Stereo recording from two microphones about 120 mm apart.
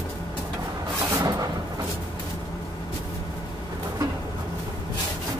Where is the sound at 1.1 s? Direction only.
30° right (ahead or behind).